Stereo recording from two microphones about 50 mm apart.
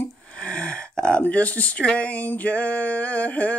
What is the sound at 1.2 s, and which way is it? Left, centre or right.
Speech, left.